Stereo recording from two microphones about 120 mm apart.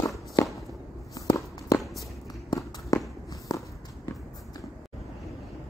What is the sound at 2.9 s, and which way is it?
Walk, 30° left (ahead or behind).